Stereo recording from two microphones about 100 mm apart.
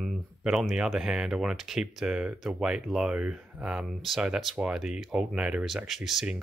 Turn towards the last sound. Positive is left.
turn(degrees=-5)  # may be behind; listen again after turning